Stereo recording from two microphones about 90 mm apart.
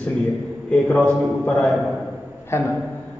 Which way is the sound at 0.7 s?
15° left (ahead or behind).